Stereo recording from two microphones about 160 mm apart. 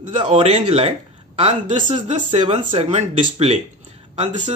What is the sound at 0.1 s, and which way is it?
Speech, 35° right (ahead or behind).